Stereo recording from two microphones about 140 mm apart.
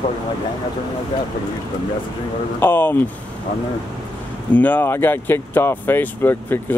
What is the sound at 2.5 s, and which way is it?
Speech, 15° left (ahead or behind).